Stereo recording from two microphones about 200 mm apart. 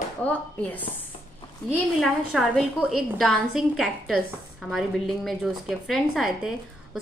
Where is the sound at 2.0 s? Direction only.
Centre (ahead or behind).